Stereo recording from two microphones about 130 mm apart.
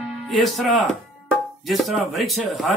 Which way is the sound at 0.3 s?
Centre (ahead or behind).